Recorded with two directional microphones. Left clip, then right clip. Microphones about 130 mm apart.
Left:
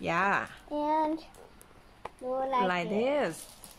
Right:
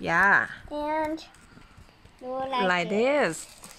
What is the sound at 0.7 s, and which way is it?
Child singing, centre (ahead or behind).